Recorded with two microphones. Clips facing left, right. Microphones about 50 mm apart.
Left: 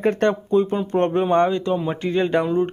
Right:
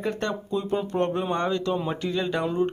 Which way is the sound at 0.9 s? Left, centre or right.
Left.